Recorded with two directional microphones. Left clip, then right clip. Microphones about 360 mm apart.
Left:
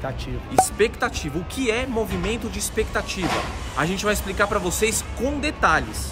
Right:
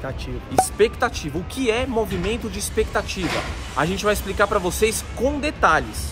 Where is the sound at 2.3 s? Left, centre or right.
Centre.